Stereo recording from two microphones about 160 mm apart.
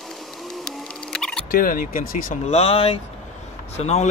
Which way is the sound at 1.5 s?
60° left (ahead or behind).